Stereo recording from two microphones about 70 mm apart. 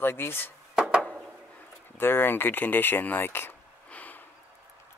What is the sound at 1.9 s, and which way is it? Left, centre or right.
Speech, left.